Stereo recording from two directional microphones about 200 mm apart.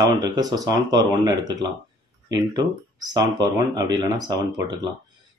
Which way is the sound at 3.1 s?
20° right (ahead or behind).